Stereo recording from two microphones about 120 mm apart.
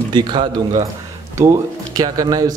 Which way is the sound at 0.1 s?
40° right (ahead or behind).